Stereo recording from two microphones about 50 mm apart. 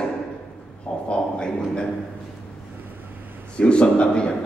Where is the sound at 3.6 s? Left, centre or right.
Left.